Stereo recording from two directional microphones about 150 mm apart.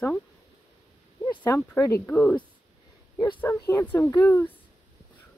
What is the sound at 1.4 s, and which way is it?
Speech, 20° left (ahead or behind).